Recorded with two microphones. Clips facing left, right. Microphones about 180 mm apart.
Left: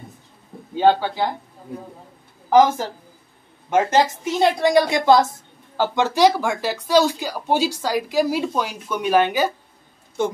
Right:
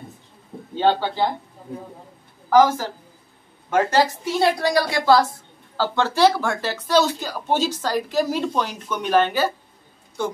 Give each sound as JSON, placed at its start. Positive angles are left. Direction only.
{"t": 0.7, "sound": "speech", "side_deg": 10}
{"t": 2.5, "sound": "a woman's voice", "side_deg": 25}